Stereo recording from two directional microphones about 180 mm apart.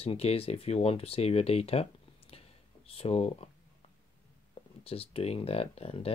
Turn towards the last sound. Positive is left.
turn(degrees=35)  # may be behind; listen again after turning